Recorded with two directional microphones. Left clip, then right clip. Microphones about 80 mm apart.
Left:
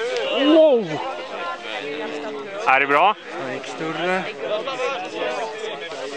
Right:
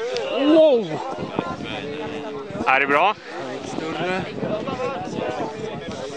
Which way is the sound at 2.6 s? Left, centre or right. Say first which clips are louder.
Left 1 dB; centre.